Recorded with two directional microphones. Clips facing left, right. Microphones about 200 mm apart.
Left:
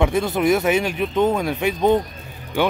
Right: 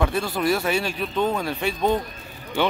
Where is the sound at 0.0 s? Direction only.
20° left (ahead or behind).